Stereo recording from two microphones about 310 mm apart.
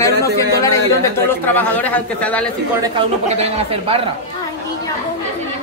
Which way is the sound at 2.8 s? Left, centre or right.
Centre.